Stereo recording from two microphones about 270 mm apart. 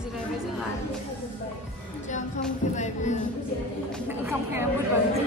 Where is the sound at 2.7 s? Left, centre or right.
Left.